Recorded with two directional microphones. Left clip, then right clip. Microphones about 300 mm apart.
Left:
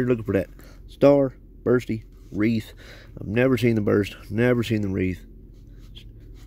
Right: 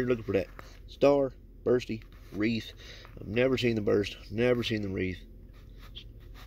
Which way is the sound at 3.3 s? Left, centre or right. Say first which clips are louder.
Left 6 dB; left.